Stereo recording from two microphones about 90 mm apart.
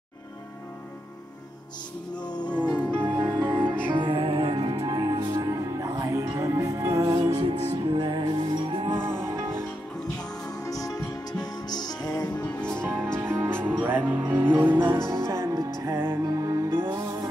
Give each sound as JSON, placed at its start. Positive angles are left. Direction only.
{"t": 2.1, "sound": "music", "side_deg": 55}
{"t": 2.7, "sound": "music", "side_deg": 10}
{"t": 3.0, "sound": "music", "side_deg": -30}
{"t": 3.9, "sound": "music", "side_deg": -60}
{"t": 7.3, "sound": "music", "side_deg": -70}
{"t": 8.9, "sound": "music", "side_deg": -25}
{"t": 10.6, "sound": "music", "side_deg": 40}
{"t": 12.4, "sound": "music", "side_deg": 10}
{"t": 12.8, "sound": "music", "side_deg": -25}
{"t": 15.9, "sound": "music", "side_deg": -25}
{"t": 16.3, "sound": "music", "side_deg": -45}